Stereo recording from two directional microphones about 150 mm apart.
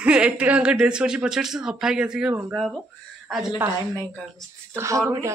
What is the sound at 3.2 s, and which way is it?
Speech, 10° right (ahead or behind).